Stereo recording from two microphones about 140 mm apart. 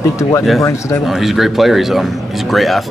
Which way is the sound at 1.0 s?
Centre (ahead or behind).